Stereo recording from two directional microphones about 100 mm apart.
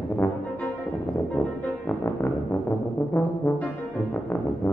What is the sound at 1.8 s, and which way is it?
Brass instrument, 20° left (ahead or behind).